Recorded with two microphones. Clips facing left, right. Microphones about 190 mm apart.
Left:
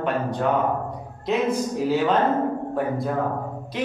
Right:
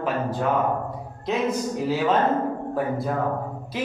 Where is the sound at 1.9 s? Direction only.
Centre (ahead or behind).